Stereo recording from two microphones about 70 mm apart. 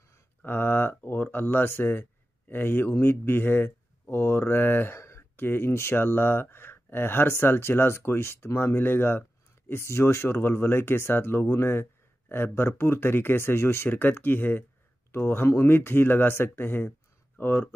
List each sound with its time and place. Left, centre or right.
0.4 s speech: left